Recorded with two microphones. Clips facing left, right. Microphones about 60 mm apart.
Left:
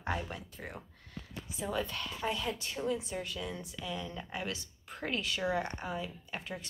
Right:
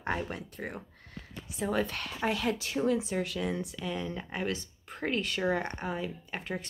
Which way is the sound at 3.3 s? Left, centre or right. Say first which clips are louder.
Right 7 dB; right.